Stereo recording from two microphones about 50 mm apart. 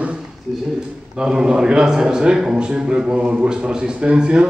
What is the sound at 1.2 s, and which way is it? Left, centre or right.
A man's voice, centre.